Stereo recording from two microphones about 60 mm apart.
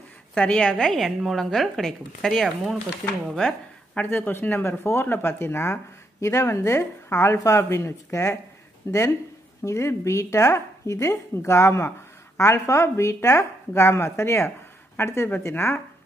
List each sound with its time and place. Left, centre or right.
0.4 s a woman's voice: left
0.9 s a woman's voice: centre
3.9 s speech: left
7.3 s speech: left